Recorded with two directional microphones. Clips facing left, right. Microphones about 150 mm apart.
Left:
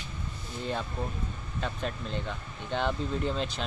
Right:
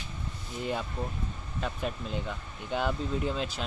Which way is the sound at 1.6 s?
5° right (ahead or behind).